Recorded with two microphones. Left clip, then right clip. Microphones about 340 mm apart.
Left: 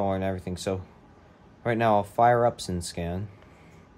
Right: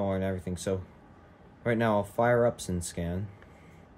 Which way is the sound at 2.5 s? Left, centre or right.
Centre.